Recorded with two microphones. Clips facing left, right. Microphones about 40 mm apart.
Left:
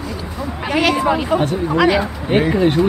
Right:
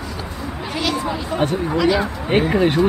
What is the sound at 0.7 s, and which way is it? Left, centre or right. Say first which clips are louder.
Speech: left 7 dB; left.